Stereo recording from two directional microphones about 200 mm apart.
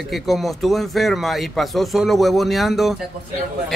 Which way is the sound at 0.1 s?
Centre (ahead or behind).